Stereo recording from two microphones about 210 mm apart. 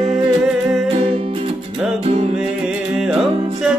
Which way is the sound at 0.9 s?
25° right (ahead or behind).